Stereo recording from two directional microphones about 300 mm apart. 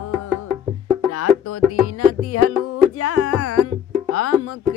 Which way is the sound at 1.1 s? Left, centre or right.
Left.